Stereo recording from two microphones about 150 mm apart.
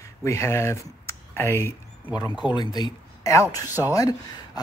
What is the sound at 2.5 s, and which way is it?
Speech, 30° left (ahead or behind).